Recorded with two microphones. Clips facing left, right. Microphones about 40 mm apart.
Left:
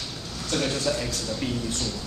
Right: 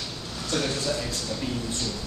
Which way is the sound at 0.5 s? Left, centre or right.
Centre.